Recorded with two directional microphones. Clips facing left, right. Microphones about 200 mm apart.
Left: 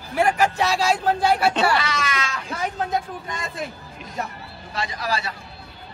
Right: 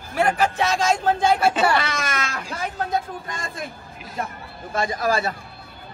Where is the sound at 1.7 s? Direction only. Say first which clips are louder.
Even; 50° right (ahead or behind).